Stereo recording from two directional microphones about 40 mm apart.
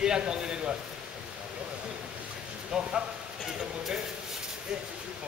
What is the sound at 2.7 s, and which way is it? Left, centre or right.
A man's voice, centre.